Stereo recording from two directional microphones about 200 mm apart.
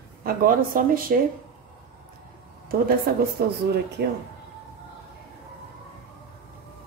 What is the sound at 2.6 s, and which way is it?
A woman's voice, 50° right (ahead or behind).